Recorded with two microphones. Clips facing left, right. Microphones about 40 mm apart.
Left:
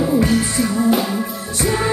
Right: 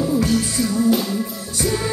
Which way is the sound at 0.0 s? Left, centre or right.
Left.